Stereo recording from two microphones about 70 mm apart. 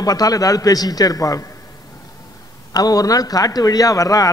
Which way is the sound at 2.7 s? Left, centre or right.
Left.